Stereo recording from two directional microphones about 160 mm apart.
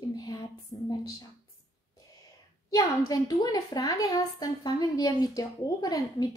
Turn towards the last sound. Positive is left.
turn(degrees=25)  # may be behind; listen again after turning